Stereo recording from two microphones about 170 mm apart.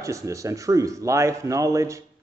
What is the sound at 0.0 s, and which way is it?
Speech, 20° right (ahead or behind).